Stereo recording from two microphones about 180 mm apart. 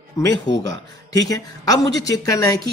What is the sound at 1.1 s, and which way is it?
A man's voice, 20° left (ahead or behind).